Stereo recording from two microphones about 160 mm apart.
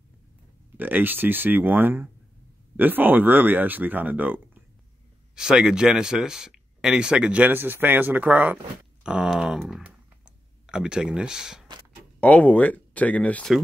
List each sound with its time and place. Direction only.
0.7 s speech: 10° right (ahead or behind)
12.2 s speech: 10° left (ahead or behind)